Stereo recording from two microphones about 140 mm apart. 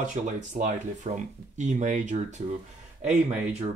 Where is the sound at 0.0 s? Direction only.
60° right (ahead or behind).